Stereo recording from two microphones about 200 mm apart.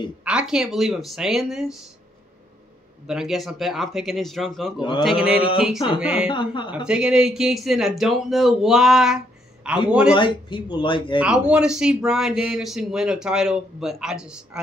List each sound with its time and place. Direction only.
0.2 s speech: 5° right (ahead or behind)
3.1 s speech: centre (ahead or behind)
6.2 s speech: 25° left (ahead or behind)
6.7 s speech: 5° right (ahead or behind)
10.1 s speech: 25° left (ahead or behind)
11.1 s speech: 5° right (ahead or behind)